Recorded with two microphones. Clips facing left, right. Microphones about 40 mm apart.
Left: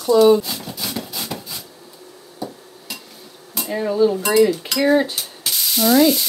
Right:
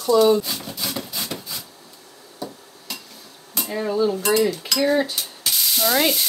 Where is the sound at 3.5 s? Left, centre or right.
Centre.